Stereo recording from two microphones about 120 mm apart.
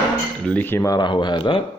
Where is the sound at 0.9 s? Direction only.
40° left (ahead or behind).